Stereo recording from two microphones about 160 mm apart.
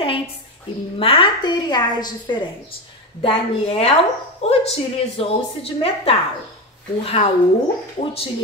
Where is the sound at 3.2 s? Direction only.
40° left (ahead or behind).